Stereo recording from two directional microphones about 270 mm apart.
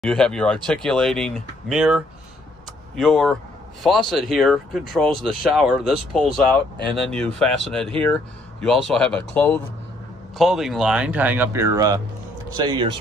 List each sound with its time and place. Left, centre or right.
0.0 s speech: centre